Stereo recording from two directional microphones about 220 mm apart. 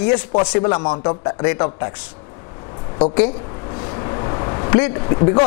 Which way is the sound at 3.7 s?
25° left (ahead or behind).